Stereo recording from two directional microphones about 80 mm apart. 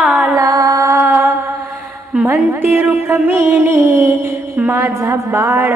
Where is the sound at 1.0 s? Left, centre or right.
Right.